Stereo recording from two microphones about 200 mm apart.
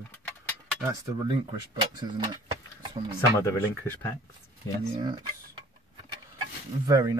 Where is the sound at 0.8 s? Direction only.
20° right (ahead or behind).